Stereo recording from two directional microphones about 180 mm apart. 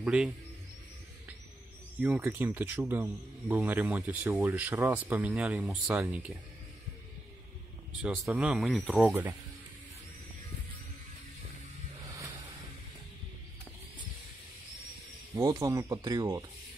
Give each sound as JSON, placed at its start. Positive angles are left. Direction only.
{"t": 0.0, "sound": "a man's voice", "side_deg": -5}
{"t": 2.0, "sound": "speech", "side_deg": -10}
{"t": 8.0, "sound": "speech", "side_deg": -5}
{"t": 15.3, "sound": "speech", "side_deg": -20}